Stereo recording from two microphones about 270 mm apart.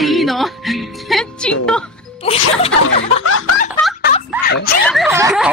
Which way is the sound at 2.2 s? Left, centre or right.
Left.